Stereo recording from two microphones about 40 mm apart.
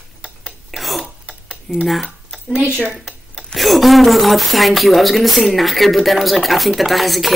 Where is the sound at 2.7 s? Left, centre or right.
Right.